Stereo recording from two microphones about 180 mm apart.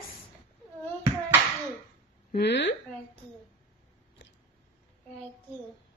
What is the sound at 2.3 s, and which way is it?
Speech, 70° left (ahead or behind).